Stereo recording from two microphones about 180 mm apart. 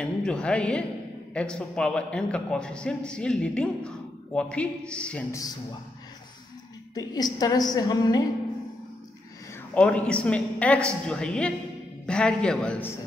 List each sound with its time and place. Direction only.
0.0 s music: 5° left (ahead or behind)
1.3 s a man's voice: 5° left (ahead or behind)
7.0 s a woman's voice: 20° left (ahead or behind)
9.8 s a woman's voice: 5° left (ahead or behind)